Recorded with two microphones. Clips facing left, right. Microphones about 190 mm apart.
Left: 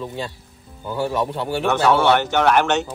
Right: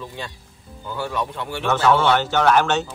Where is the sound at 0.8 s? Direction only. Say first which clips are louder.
Left 4 dB; 25° left (ahead or behind).